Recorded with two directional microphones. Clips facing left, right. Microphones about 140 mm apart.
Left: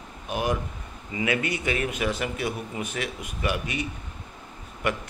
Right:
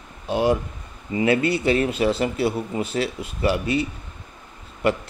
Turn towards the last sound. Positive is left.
turn(degrees=-30)  # may be behind; listen again after turning